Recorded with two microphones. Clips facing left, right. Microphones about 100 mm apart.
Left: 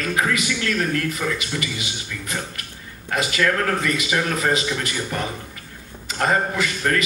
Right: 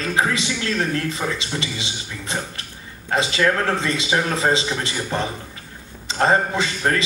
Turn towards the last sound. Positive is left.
turn(degrees=-25)  # may be behind; listen again after turning